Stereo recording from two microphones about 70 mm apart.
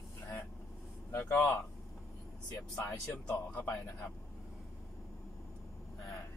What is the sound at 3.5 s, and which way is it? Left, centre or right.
Speech, left.